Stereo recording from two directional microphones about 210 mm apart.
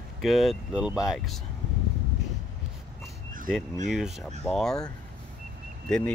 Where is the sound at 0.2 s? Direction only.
Centre (ahead or behind).